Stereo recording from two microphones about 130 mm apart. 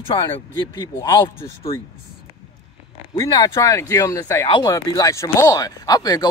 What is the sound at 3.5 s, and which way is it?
Speech, 25° left (ahead or behind).